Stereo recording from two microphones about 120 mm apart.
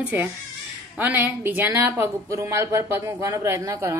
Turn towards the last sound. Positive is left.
turn(degrees=-25)  # may be behind; listen again after turning